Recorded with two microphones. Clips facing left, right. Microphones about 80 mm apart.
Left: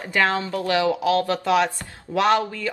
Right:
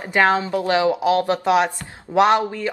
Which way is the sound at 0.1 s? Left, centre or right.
Right.